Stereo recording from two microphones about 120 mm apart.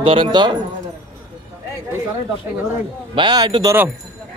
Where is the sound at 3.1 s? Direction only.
35° right (ahead or behind).